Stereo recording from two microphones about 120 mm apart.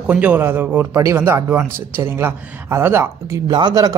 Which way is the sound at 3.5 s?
35° right (ahead or behind).